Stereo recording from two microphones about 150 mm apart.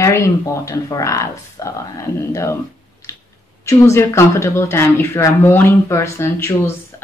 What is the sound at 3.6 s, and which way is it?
Speech, 20° left (ahead or behind).